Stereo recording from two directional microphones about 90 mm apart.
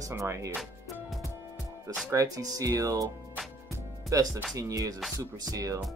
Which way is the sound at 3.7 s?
35° right (ahead or behind).